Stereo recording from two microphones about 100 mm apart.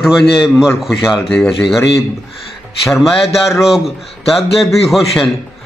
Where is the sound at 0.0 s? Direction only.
5° right (ahead or behind).